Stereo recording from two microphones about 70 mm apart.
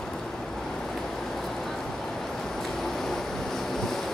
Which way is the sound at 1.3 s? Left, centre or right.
Centre.